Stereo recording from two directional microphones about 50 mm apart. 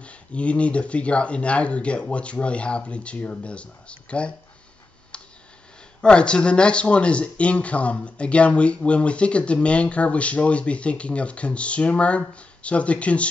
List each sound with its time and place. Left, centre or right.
0.0 s speech: left
5.1 s tick: centre
5.9 s speech: centre